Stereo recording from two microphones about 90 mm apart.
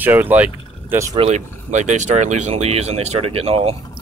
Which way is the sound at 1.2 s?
90° right.